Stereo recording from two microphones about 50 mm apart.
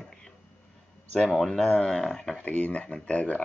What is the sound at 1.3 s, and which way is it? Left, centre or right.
Speech, centre.